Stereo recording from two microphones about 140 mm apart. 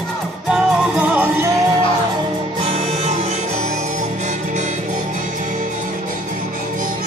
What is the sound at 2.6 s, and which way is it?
Music, 40° right (ahead or behind).